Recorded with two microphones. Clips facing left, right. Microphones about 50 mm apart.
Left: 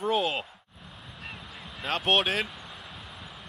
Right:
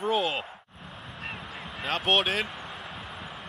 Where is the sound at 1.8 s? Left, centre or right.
Centre.